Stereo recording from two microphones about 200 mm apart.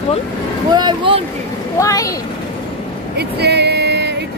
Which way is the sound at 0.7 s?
20° right (ahead or behind).